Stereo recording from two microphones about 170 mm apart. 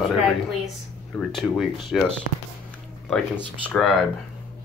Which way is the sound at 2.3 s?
65° left (ahead or behind).